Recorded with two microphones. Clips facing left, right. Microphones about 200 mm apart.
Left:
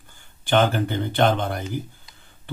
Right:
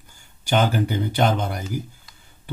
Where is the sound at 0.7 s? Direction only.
10° right (ahead or behind).